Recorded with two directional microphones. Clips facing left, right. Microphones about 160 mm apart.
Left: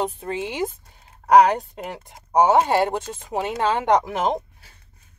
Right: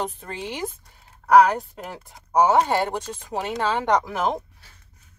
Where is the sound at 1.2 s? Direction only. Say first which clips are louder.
Left 1 dB; 40° left (ahead or behind).